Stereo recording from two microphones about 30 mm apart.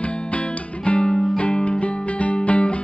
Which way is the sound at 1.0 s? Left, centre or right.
Left.